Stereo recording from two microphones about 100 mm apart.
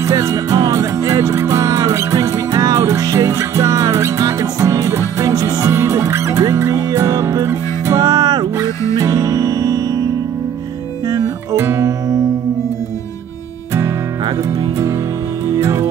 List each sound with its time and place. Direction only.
0.0 s music: 35° right (ahead or behind)
8.0 s music: 45° right (ahead or behind)
11.1 s music: 25° right (ahead or behind)
15.5 s music: 30° right (ahead or behind)